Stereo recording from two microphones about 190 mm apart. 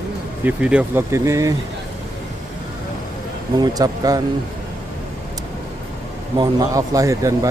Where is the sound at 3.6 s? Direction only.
20° right (ahead or behind).